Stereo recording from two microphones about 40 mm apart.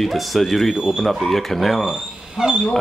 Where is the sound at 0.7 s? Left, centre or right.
Centre.